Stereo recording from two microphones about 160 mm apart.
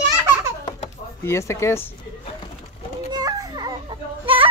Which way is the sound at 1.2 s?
15° left (ahead or behind).